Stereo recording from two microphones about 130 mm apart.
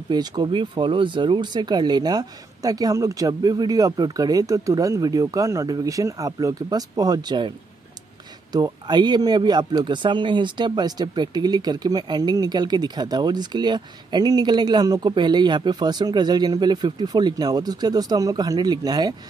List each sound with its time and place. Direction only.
0.1 s speech: 35° right (ahead or behind)